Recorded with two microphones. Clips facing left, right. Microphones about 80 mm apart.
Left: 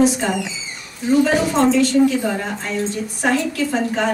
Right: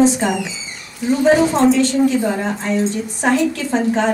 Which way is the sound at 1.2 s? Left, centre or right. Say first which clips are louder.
Right 4 dB; right.